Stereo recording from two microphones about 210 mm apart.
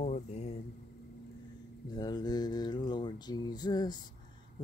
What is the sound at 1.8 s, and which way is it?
Speech, 20° left (ahead or behind).